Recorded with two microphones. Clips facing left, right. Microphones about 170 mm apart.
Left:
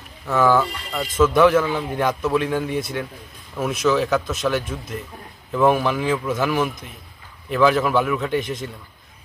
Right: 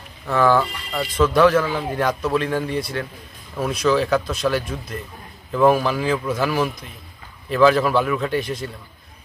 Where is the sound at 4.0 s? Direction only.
5° left (ahead or behind).